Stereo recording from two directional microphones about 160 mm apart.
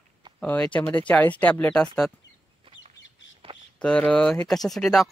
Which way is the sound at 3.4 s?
35° right (ahead or behind).